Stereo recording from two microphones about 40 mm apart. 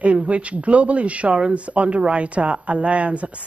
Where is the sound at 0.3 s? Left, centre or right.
Right.